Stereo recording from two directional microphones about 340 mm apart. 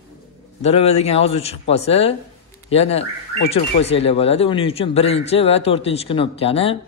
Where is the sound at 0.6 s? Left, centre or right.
Centre.